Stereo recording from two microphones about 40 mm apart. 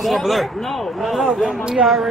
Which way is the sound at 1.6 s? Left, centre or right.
Centre.